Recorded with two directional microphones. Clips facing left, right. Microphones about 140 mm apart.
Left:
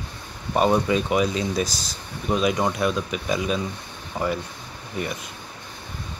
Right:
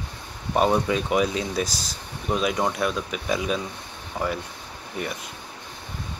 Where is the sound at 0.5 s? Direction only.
Centre (ahead or behind).